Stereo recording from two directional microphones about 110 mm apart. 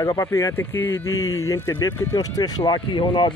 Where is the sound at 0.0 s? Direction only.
30° left (ahead or behind).